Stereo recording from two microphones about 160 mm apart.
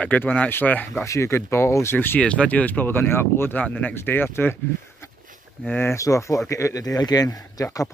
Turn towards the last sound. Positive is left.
turn(degrees=20)  # may be behind; listen again after turning